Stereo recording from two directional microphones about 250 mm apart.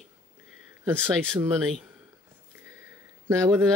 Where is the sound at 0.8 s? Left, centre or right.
Centre.